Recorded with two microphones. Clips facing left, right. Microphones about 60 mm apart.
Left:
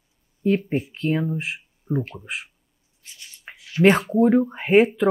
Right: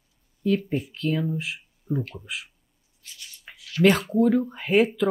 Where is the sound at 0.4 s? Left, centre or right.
Left.